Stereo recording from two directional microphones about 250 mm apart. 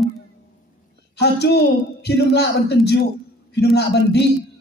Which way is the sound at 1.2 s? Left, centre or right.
Left.